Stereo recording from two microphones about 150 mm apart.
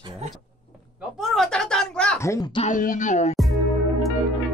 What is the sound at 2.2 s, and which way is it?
Speech, 20° left (ahead or behind).